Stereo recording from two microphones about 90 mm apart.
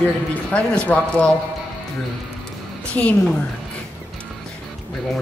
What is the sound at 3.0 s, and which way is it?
Speech, 15° left (ahead or behind).